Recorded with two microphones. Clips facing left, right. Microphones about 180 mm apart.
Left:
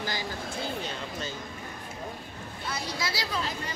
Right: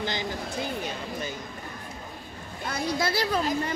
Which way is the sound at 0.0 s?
20° right (ahead or behind).